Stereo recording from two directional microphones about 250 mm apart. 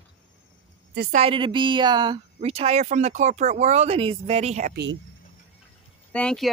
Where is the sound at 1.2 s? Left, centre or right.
Right.